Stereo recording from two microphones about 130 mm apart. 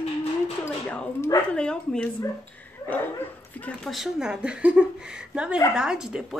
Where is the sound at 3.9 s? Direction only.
5° right (ahead or behind).